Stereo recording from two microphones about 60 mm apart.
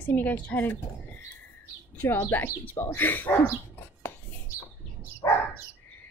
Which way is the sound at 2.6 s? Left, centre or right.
Left.